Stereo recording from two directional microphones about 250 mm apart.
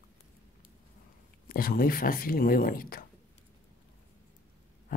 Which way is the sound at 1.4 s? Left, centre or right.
Left.